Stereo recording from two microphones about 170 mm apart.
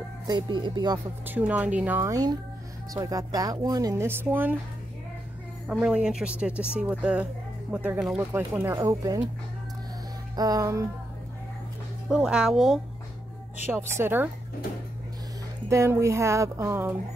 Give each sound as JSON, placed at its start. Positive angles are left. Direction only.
{"t": 0.3, "sound": "speech", "side_deg": -25}
{"t": 1.2, "sound": "speech", "side_deg": -10}
{"t": 5.7, "sound": "speech", "side_deg": -5}
{"t": 10.3, "sound": "speech", "side_deg": -20}
{"t": 12.1, "sound": "speech", "side_deg": -5}
{"t": 13.7, "sound": "speech", "side_deg": -15}
{"t": 15.7, "sound": "speech", "side_deg": -15}